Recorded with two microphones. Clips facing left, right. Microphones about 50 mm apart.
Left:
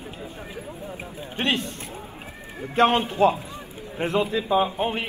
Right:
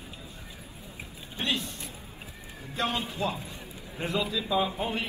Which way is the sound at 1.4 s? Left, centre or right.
Left.